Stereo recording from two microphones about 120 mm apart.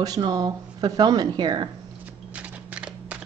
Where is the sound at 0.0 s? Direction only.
30° right (ahead or behind).